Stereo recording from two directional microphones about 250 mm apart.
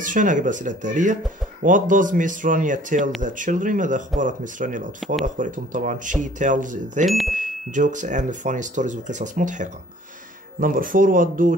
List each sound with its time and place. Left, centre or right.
0.0 s speech: right
7.1 s speech: centre
7.3 s speech: right